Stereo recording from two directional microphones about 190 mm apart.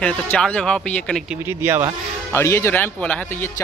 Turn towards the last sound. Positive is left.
turn(degrees=10)  # may be behind; listen again after turning